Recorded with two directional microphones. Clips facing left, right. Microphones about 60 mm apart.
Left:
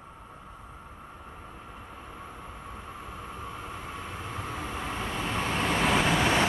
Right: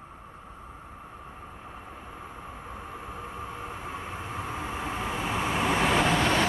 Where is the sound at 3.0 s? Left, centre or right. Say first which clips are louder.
Right 2 dB; centre.